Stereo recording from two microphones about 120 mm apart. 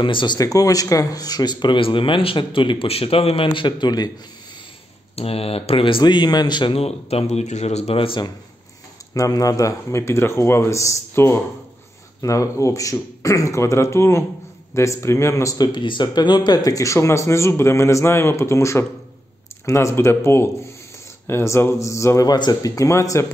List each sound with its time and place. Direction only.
0.0 s speech: 40° left (ahead or behind)
5.1 s speech: 55° left (ahead or behind)
6.8 s speech: 60° left (ahead or behind)
9.1 s speech: 30° left (ahead or behind)